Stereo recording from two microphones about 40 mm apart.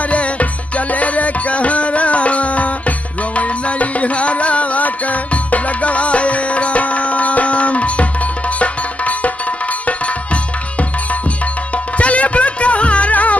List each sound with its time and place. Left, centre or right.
0.1 s music: left
9.8 s tabla: left
11.7 s music: left